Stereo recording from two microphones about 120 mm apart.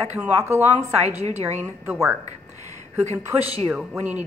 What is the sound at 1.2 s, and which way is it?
Speech, 65° right (ahead or behind).